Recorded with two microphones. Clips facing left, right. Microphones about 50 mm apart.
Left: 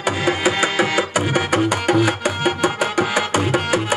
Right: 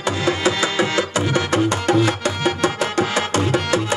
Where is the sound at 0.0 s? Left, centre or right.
Centre.